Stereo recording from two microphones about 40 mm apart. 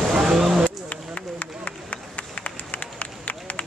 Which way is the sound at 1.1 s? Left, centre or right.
Left.